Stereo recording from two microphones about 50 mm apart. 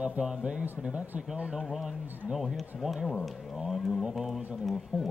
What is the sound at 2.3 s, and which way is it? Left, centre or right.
Speech, centre.